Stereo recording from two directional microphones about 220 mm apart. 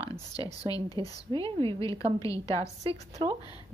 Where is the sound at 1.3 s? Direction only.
25° right (ahead or behind).